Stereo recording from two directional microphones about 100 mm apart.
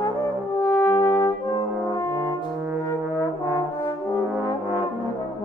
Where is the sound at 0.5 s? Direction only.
40° left (ahead or behind).